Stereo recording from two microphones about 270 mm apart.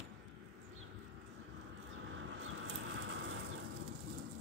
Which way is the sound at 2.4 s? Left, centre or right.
Right.